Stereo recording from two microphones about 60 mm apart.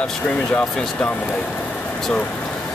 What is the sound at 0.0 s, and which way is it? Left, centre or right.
Speech, centre.